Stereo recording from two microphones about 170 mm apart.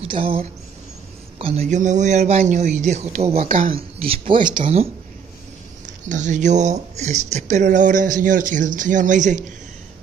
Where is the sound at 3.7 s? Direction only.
35° right (ahead or behind).